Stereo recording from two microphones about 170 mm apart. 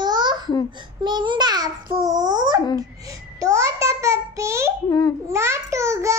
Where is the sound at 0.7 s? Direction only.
25° right (ahead or behind).